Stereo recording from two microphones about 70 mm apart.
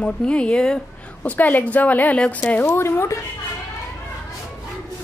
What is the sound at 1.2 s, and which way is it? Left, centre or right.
A woman's voice, left.